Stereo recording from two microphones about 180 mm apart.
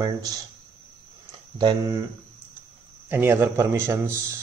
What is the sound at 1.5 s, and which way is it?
Speech, 25° right (ahead or behind).